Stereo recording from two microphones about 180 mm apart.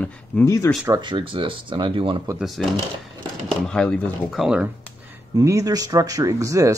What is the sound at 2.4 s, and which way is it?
Speech, centre (ahead or behind).